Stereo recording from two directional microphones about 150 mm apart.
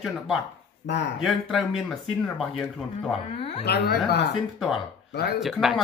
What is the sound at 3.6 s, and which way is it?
Speech, 90° left.